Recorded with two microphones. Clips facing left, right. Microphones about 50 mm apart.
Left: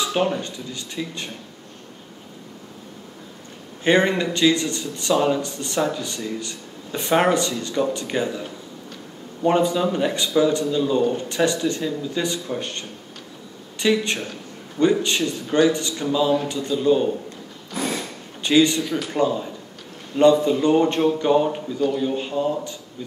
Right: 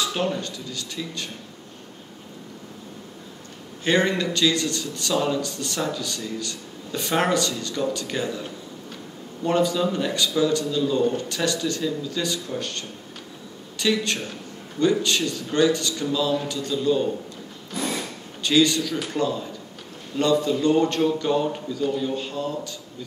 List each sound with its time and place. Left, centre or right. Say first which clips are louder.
0.0 s a man's voice: left 3 dB; centre
3.8 s a man's voice: left 3 dB; left
18.4 s a man's voice: left 2 dB; left